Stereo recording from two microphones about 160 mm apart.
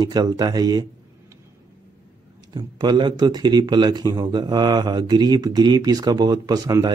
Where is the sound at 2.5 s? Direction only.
25° right (ahead or behind).